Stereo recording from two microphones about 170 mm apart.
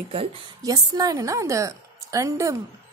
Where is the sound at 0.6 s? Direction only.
20° right (ahead or behind).